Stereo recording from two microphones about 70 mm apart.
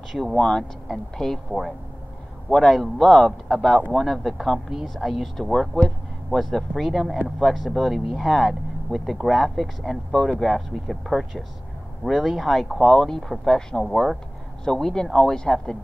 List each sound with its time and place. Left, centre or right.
0.1 s speech: centre